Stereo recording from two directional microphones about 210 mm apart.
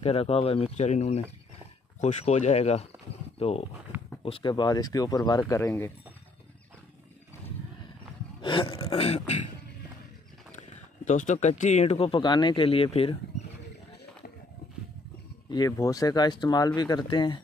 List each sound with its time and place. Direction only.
0.0 s speech: 30° left (ahead or behind)
8.4 s speech: 25° left (ahead or behind)
11.1 s speech: 35° left (ahead or behind)
15.5 s speech: 15° left (ahead or behind)